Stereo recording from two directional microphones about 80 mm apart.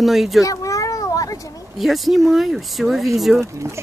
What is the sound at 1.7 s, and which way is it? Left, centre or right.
Speech, centre.